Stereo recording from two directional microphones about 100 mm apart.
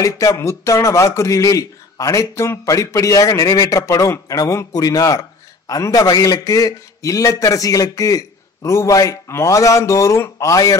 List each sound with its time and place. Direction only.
0.0 s speech: 30° left (ahead or behind)